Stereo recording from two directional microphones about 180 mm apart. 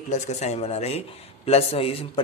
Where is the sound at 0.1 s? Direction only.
40° left (ahead or behind).